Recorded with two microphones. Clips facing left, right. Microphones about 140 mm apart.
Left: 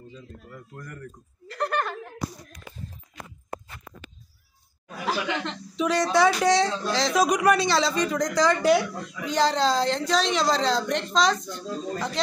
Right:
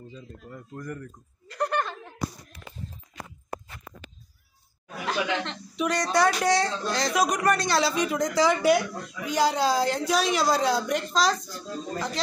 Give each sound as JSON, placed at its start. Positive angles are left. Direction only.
{"t": 0.5, "sound": "speech", "side_deg": -20}
{"t": 1.5, "sound": "chuckle", "side_deg": -15}
{"t": 4.8, "sound": "speech", "side_deg": 0}